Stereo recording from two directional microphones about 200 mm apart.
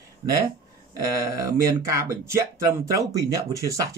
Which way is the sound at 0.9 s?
15° right (ahead or behind).